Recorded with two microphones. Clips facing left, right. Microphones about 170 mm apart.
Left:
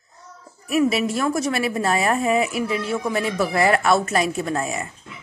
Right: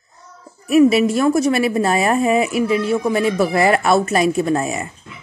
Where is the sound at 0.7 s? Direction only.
15° right (ahead or behind).